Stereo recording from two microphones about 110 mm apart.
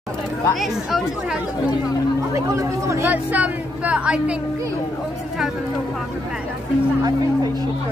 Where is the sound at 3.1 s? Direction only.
15° right (ahead or behind).